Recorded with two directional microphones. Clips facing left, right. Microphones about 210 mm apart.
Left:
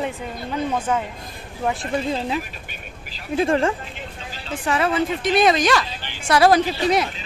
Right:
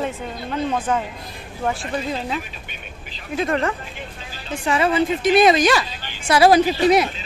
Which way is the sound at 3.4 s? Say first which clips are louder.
Left 2 dB; 30° left (ahead or behind).